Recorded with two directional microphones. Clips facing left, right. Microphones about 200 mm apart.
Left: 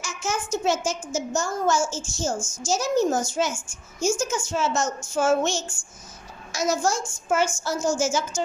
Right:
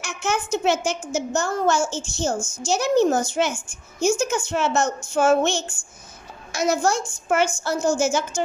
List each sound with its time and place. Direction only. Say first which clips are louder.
0.0 s a child's voice: right 3 dB; 60° right (ahead or behind)